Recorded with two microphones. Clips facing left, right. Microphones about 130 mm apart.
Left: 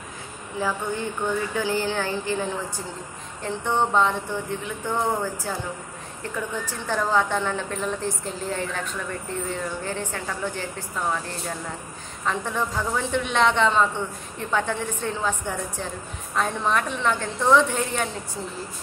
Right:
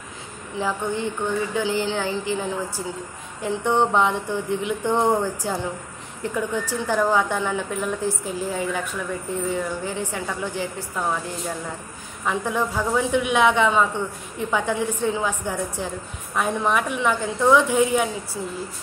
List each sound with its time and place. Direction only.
0.6 s speech: 20° right (ahead or behind)
3.4 s speech: 15° right (ahead or behind)